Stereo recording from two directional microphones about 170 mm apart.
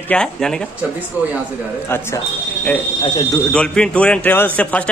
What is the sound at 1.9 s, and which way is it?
Speech, 15° left (ahead or behind).